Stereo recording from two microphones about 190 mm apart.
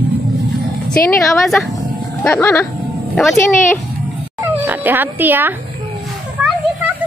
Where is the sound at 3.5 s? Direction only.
40° left (ahead or behind).